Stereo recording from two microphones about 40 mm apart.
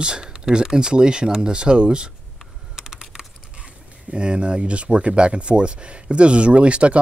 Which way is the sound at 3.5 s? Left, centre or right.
Right.